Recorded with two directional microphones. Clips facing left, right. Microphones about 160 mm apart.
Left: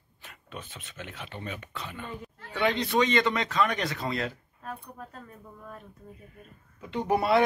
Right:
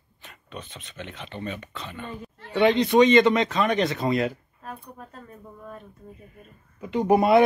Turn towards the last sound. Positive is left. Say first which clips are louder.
# right 6 dB
turn(degrees=-15)  # may be behind; listen again after turning